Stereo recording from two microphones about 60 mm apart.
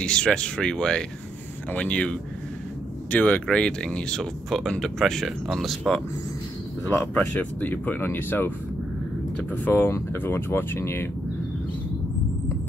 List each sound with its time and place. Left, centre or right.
0.0 s speech: centre
6.9 s speech: left